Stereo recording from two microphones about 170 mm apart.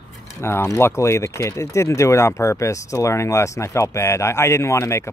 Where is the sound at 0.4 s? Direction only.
15° left (ahead or behind).